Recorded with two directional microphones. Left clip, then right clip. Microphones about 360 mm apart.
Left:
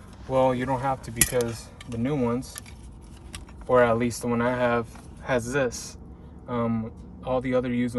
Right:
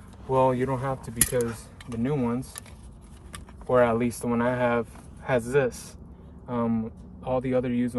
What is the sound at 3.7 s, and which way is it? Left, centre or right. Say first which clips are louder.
Speech: left 1 dB; centre.